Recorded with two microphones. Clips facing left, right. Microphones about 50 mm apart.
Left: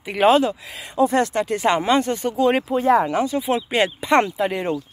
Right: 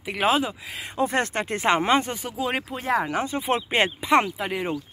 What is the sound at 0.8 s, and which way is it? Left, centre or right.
Speech, right.